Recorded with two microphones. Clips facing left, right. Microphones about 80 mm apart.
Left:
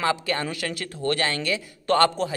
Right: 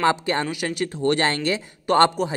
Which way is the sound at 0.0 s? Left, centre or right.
Right.